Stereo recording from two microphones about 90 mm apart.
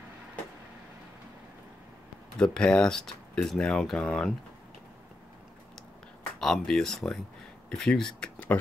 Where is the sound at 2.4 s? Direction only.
10° left (ahead or behind).